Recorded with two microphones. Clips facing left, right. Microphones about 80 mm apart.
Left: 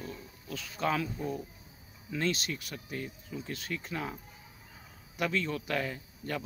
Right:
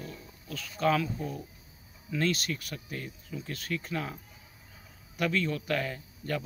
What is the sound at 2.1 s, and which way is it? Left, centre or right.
Speech, centre.